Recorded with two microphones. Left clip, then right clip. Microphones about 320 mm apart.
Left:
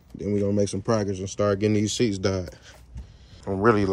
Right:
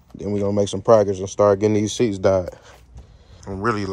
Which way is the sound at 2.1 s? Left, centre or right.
Centre.